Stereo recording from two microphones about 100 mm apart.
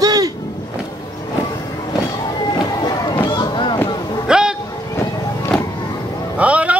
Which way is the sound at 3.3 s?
50° left (ahead or behind).